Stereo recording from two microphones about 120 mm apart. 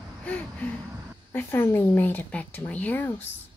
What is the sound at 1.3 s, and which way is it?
Speech, 20° left (ahead or behind).